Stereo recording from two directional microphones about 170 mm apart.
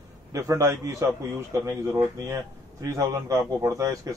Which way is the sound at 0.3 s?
15° right (ahead or behind).